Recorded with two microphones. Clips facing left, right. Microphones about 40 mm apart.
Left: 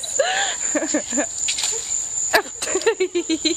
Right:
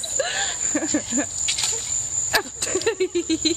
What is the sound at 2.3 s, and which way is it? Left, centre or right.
Speech, centre.